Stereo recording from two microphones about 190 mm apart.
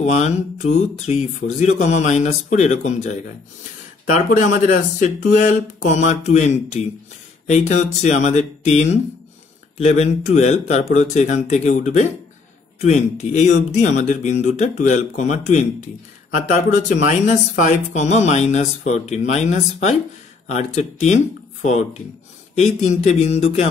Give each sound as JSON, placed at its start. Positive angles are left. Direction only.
{"t": 0.0, "sound": "speech", "side_deg": 35}
{"t": 16.9, "sound": "speech", "side_deg": 40}